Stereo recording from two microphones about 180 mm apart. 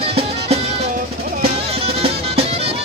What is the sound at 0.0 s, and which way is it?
Music, 35° right (ahead or behind).